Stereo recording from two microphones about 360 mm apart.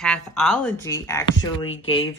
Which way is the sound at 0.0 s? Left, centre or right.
Centre.